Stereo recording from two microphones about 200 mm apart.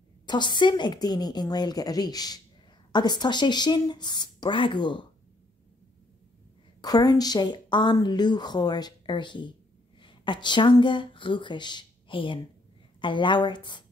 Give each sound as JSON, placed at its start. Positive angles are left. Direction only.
{"t": 0.3, "sound": "a woman's voice", "side_deg": 20}
{"t": 6.8, "sound": "a woman's voice", "side_deg": 20}